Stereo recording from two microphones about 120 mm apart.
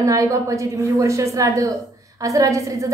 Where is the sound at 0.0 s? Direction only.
25° right (ahead or behind).